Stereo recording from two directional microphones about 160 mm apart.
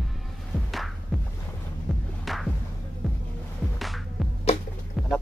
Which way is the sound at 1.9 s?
Centre (ahead or behind).